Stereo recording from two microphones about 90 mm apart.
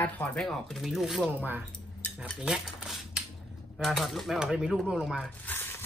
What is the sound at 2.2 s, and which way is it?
Cutlery, 10° right (ahead or behind).